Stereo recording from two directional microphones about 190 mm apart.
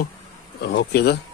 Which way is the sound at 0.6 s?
60° left (ahead or behind).